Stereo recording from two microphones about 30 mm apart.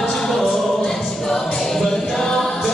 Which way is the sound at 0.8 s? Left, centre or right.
Centre.